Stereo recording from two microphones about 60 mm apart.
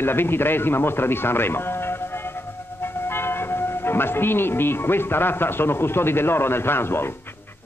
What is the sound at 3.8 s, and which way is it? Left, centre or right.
Speech, left.